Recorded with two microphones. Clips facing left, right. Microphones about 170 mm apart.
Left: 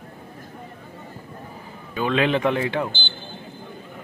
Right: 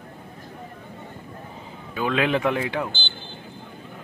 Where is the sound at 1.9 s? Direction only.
5° right (ahead or behind).